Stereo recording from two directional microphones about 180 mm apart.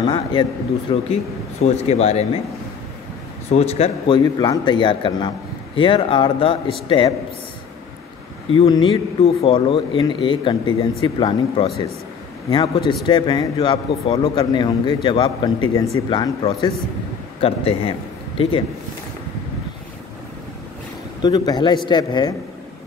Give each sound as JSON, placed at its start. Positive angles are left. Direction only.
{"t": 0.0, "sound": "a man's voice", "side_deg": 25}
{"t": 3.5, "sound": "a man's voice", "side_deg": 35}
{"t": 8.5, "sound": "a man's voice", "side_deg": 30}
{"t": 21.2, "sound": "a man's voice", "side_deg": 25}